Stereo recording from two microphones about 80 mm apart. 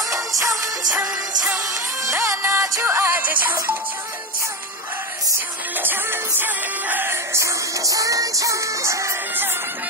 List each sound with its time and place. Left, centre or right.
0.1 s music: right
0.9 s music: centre
2.0 s music: right
5.8 s music: right
7.3 s music: right